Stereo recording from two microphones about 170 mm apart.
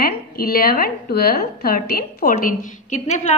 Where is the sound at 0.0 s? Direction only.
60° left (ahead or behind).